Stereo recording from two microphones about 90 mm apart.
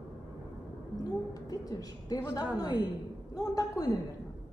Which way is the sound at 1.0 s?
45° left (ahead or behind).